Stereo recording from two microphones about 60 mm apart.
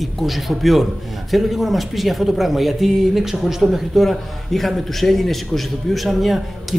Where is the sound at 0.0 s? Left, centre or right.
Centre.